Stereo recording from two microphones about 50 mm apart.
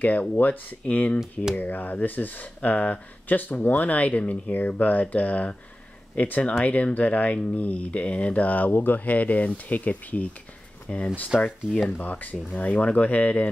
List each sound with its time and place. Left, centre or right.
0.0 s speech: left
10.9 s speech: centre
11.3 s speech: centre
12.0 s speech: left